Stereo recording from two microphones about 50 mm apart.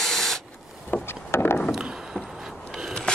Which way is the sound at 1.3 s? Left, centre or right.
Left.